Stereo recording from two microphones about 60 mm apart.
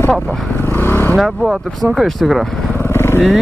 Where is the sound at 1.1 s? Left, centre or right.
Centre.